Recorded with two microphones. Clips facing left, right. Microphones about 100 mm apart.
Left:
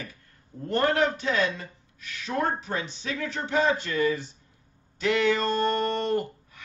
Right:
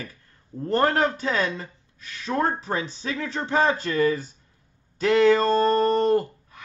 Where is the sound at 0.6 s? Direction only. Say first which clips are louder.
Right 2 dB; 40° right (ahead or behind).